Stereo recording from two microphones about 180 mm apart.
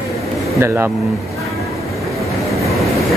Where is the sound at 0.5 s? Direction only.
15° right (ahead or behind).